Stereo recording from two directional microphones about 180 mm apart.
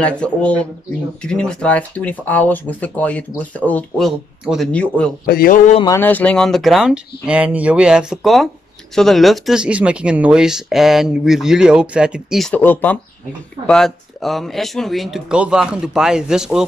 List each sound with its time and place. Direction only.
0.0 s speech: 5° left (ahead or behind)
5.2 s a man's voice: 55° left (ahead or behind)
5.9 s speech: 10° left (ahead or behind)